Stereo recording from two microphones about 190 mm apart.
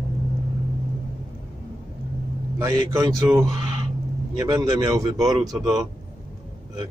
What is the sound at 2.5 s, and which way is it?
A man's voice, 15° right (ahead or behind).